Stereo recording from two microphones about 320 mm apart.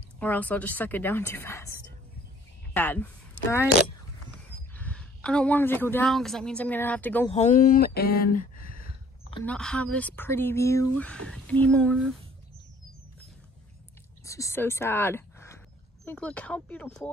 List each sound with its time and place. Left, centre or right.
0.2 s speech: centre
4.7 s a woman's voice: centre
7.2 s speech: left
9.3 s speech: centre
14.2 s speech: centre